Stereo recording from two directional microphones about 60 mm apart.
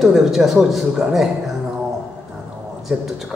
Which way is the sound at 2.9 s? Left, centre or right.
Right.